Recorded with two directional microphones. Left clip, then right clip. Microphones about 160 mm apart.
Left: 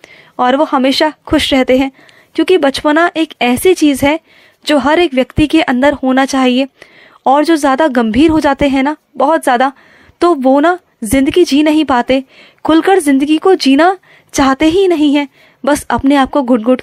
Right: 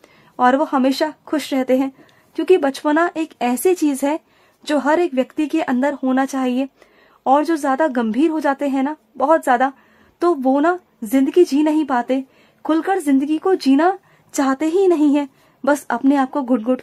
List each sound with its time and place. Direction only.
0.4 s speech: 25° left (ahead or behind)